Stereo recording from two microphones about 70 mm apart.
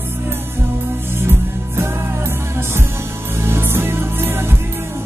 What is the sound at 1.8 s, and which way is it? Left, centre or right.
Music, right.